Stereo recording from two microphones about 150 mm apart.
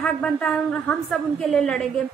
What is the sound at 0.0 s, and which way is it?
A woman's voice, 5° left (ahead or behind).